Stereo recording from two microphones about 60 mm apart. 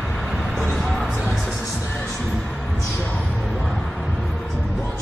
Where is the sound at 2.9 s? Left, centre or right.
Left.